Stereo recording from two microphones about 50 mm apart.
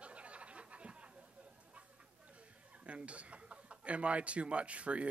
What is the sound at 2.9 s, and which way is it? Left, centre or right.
Speech, right.